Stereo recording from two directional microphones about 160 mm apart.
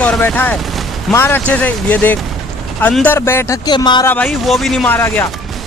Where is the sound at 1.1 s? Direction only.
15° left (ahead or behind).